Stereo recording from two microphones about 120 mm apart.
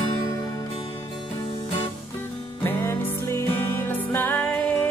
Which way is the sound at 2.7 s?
20° left (ahead or behind).